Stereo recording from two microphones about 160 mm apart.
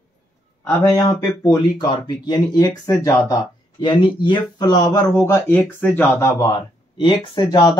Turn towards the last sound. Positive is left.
turn(degrees=25)  # may be behind; listen again after turning